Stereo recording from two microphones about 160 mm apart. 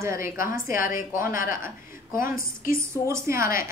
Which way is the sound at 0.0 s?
15° right (ahead or behind).